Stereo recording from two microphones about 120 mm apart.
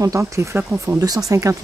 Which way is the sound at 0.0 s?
25° right (ahead or behind).